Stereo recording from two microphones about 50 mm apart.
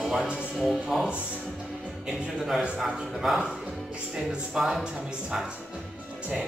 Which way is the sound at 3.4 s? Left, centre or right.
Centre.